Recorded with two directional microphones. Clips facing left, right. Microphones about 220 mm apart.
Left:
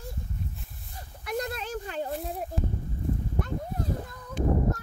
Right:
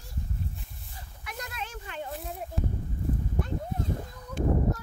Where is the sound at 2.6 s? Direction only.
Centre (ahead or behind).